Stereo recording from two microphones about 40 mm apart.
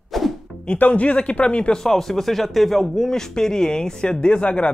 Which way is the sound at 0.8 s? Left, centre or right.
Left.